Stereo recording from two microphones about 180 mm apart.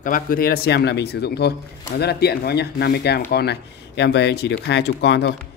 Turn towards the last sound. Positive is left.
turn(degrees=70)  # may be behind; listen again after turning